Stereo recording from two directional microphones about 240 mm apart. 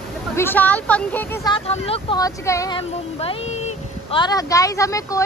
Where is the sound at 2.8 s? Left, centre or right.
Left.